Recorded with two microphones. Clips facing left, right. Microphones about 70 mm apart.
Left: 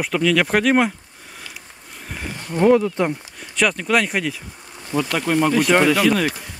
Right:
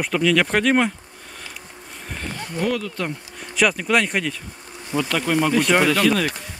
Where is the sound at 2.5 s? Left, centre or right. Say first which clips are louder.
Left 9 dB; left.